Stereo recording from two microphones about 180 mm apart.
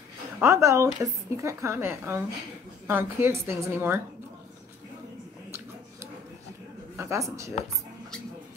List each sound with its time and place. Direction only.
0.4 s a woman's voice: 15° right (ahead or behind)
7.0 s a woman's voice: 15° right (ahead or behind)